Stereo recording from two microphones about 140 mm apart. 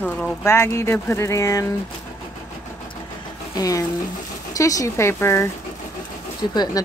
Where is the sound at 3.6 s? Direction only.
25° left (ahead or behind).